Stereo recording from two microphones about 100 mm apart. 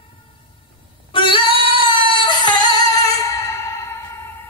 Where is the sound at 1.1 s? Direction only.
60° left (ahead or behind); by 3.7 s 30° left (ahead or behind).